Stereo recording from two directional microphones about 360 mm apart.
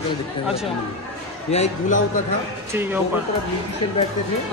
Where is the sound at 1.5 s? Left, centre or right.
Centre.